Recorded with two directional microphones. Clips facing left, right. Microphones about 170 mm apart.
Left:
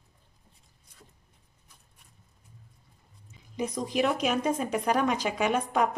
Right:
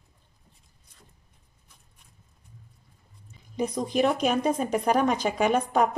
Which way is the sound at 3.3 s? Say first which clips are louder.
Right 3 dB; 35° right (ahead or behind).